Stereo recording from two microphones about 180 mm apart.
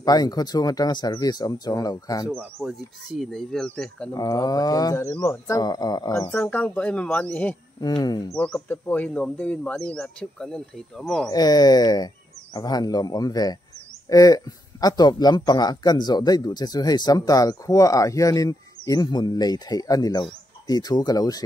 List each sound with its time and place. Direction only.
0.0 s speech: 20° left (ahead or behind)
2.2 s speech: 5° right (ahead or behind)
4.1 s speech: 20° left (ahead or behind)
7.8 s speech: 20° left (ahead or behind)
8.5 s speech: 10° left (ahead or behind)
11.2 s speech: 20° left (ahead or behind)